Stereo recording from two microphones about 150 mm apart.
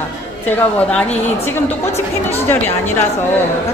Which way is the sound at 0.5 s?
10° left (ahead or behind).